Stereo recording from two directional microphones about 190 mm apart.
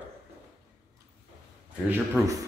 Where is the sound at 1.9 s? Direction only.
15° right (ahead or behind).